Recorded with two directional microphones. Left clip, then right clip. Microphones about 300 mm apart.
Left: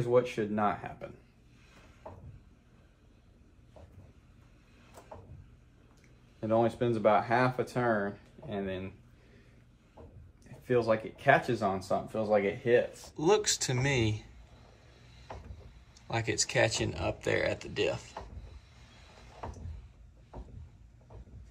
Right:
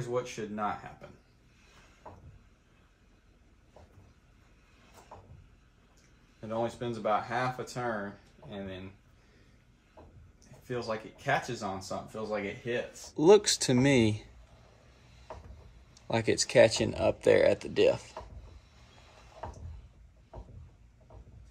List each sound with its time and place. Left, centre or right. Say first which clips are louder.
0.1 s speech: left 7 dB; centre
2.0 s a sound: left 2 dB; centre
6.4 s speech: left 6 dB; centre
10.7 s speech: left 7 dB; centre
13.2 s speech: right 5 dB; centre
16.1 s speech: right 3 dB; centre